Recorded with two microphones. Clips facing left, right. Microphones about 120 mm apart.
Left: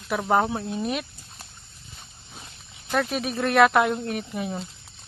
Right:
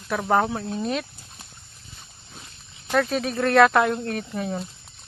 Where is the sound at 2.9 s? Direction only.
15° left (ahead or behind).